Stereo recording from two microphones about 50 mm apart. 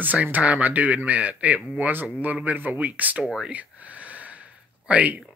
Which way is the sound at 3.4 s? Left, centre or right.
Right.